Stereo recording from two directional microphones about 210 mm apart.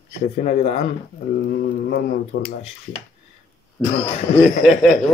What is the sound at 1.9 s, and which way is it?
Speech, 45° left (ahead or behind).